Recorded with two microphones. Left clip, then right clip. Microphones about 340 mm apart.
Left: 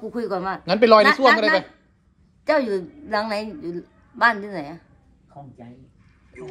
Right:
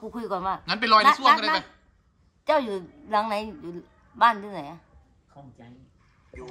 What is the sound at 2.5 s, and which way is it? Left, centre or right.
A woman's voice, centre.